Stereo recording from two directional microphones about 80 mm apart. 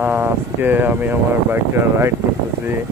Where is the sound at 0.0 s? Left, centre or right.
Right.